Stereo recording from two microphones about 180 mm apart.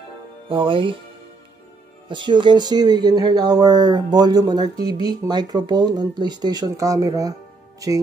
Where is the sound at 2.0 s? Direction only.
25° right (ahead or behind).